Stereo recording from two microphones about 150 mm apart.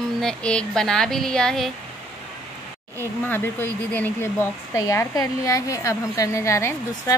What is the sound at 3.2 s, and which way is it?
A woman's voice, 15° left (ahead or behind).